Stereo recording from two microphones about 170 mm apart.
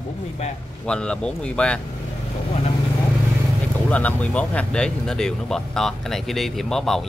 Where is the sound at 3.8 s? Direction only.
10° left (ahead or behind).